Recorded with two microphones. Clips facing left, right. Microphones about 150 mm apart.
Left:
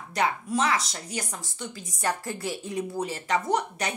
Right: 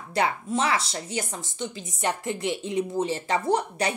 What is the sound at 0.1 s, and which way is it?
Speech, 30° right (ahead or behind).